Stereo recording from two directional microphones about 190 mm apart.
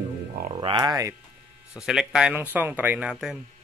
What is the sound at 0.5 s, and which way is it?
Speech, 20° right (ahead or behind).